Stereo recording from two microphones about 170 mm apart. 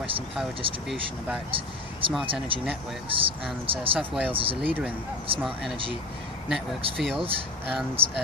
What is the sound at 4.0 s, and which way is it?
Speech, 10° right (ahead or behind).